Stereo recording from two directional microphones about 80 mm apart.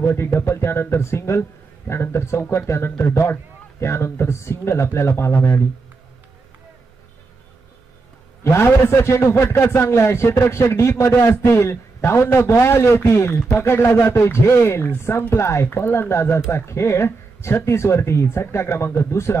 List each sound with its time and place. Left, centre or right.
0.0 s a man's voice: left
8.5 s a man's voice: left